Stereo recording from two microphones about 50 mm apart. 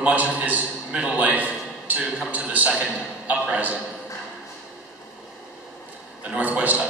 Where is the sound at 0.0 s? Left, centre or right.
Right.